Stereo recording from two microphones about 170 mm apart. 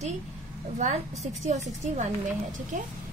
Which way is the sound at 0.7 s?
40° right (ahead or behind).